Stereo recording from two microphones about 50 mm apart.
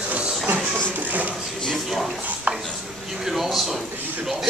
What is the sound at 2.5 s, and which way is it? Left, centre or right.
Speech, right.